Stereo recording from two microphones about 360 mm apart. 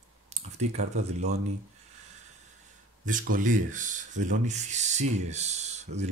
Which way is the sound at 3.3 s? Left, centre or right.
Right.